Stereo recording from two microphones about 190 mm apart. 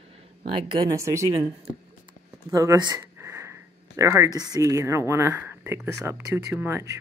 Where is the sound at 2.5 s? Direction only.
15° right (ahead or behind).